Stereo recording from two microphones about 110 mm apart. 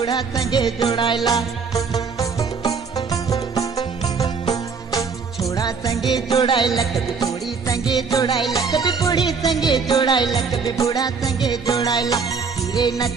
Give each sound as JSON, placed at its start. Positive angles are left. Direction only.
{"t": 0.0, "sound": "music", "side_deg": 40}
{"t": 6.8, "sound": "music", "side_deg": 30}